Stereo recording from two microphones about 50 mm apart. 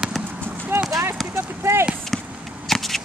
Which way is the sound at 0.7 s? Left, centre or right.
Right.